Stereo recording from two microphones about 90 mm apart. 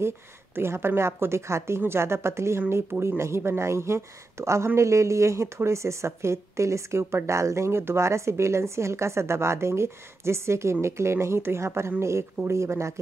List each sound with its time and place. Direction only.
0.6 s a woman's voice: 25° right (ahead or behind)